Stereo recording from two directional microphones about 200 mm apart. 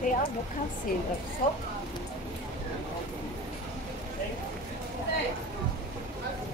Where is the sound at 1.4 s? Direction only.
40° left (ahead or behind).